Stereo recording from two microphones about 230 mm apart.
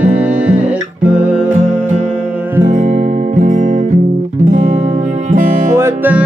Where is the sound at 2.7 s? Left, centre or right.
Right.